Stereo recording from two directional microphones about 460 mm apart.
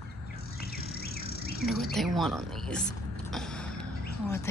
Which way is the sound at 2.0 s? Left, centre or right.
Centre.